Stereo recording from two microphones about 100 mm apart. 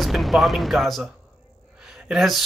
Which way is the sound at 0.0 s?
Centre (ahead or behind).